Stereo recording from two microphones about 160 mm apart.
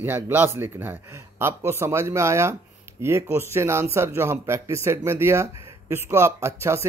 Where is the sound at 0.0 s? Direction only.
10° right (ahead or behind).